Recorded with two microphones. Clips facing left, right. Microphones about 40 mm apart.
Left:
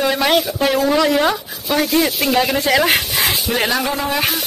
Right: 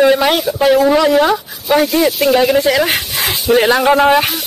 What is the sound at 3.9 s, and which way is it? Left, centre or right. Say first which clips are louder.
Speech: right 11 dB; right.